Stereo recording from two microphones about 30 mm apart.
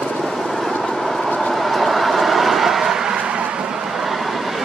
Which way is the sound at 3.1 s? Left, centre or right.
Right.